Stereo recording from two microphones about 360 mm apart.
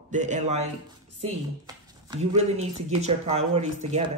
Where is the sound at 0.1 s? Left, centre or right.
Centre.